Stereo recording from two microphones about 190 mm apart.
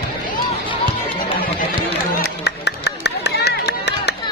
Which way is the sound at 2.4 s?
60° left (ahead or behind).